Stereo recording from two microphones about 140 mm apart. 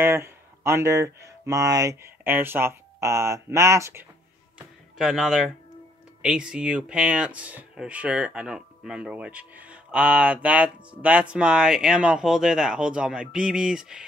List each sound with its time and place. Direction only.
0.0 s speech: 15° right (ahead or behind)
4.6 s music: 5° right (ahead or behind)
6.2 s speech: 5° right (ahead or behind)